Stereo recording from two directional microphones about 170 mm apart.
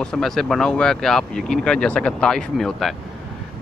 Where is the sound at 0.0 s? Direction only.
5° left (ahead or behind).